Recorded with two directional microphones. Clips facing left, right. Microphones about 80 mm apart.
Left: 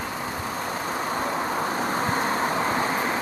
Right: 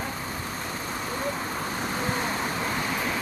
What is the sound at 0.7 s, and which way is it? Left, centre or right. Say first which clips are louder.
Vehicle: left 5 dB; left.